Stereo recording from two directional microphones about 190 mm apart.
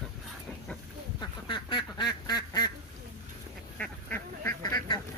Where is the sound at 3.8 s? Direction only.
10° left (ahead or behind).